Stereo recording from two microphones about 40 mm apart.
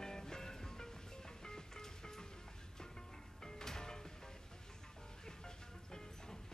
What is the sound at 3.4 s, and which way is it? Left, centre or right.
Music, centre.